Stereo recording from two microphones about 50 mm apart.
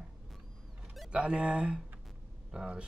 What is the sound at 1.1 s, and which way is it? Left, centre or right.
Speech, centre.